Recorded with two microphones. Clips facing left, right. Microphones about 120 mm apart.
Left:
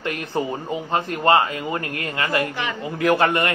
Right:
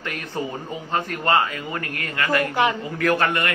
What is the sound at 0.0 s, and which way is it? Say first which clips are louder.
Speech: left 4 dB; 25° left (ahead or behind).